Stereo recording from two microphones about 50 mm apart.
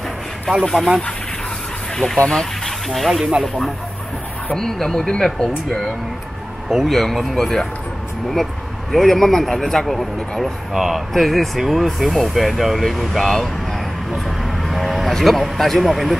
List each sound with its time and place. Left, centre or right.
0.5 s speech: centre
2.1 s speech: centre
2.9 s speech: centre
4.6 s speech: centre
6.7 s speech: centre
8.9 s speech: centre
14.1 s vehicle: centre